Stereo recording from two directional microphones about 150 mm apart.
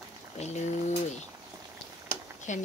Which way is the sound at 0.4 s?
50° left (ahead or behind).